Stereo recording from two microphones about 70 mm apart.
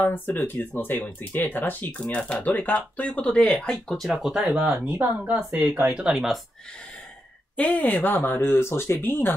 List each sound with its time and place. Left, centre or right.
0.0 s speech: left
2.0 s speech: centre
4.1 s speech: centre
4.6 s speech: right
6.1 s speech: centre
7.5 s speech: left